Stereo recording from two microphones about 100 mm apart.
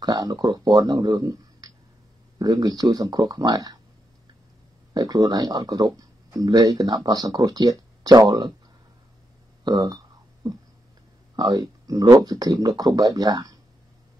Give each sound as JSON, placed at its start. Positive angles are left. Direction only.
{"t": 0.0, "sound": "speech", "side_deg": -40}
{"t": 4.9, "sound": "speech", "side_deg": -40}
{"t": 9.7, "sound": "speech", "side_deg": -50}
{"t": 11.3, "sound": "speech", "side_deg": -45}